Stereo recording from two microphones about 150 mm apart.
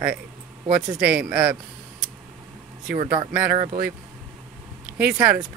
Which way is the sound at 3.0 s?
35° right (ahead or behind).